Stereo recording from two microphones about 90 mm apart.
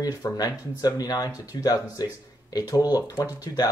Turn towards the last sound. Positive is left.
turn(degrees=45)  # may be behind; listen again after turning